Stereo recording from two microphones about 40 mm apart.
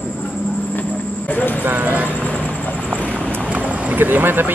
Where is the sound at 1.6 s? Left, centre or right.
Right.